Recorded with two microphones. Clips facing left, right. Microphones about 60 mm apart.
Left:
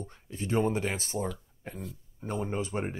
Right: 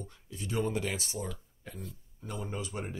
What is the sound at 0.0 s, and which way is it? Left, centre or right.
Speech, left.